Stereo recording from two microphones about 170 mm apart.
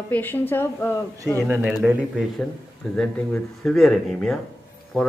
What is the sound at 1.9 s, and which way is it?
Speech, 5° right (ahead or behind).